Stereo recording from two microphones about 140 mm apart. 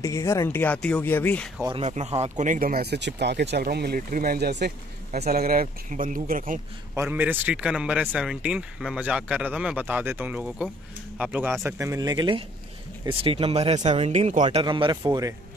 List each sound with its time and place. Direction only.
0.0 s speech: 25° left (ahead or behind)
1.9 s speech: 50° right (ahead or behind); by 2.8 s 80° right
3.6 s speech: 90° right
7.0 s speech: 15° right (ahead or behind)
11.6 s speech: 20° right (ahead or behind); by 14.4 s 50° right (ahead or behind)
14.5 s speech: 35° right (ahead or behind)